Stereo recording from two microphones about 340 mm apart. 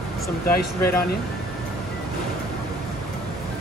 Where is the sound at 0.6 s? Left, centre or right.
Left.